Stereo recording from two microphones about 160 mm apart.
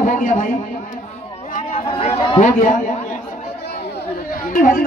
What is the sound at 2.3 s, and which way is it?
Speech, 55° left (ahead or behind).